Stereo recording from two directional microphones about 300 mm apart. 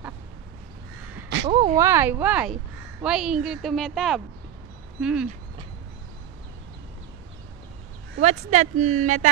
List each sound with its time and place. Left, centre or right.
1.5 s a woman's voice: centre
8.2 s speech: right